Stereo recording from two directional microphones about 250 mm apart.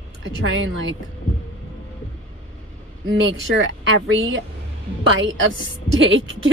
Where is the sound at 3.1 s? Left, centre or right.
Right.